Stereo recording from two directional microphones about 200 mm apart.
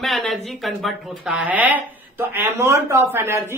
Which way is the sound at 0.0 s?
Centre (ahead or behind).